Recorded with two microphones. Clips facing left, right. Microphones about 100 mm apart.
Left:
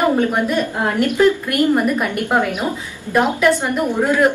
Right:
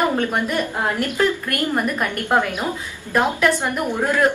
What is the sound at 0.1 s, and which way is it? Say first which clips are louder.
A woman's voice: left 4 dB; 15° left (ahead or behind).